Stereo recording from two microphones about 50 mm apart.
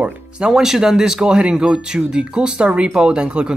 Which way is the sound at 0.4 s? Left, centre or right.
Centre.